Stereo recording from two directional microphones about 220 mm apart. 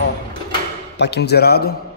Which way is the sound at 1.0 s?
50° left (ahead or behind).